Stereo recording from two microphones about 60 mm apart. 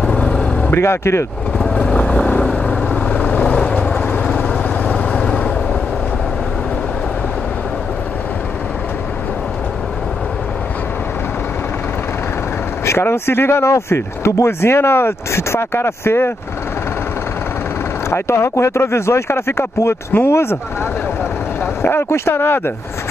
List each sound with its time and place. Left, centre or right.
0.0 s vehicle: centre
0.7 s speech: left
1.8 s vehicle: left
13.0 s speech: left
18.1 s speech: left
21.8 s speech: left